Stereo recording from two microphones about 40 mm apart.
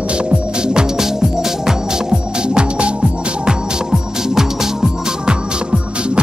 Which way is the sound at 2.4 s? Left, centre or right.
Right.